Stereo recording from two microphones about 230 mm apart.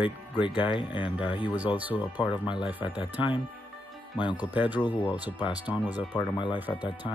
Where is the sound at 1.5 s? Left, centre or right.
Centre.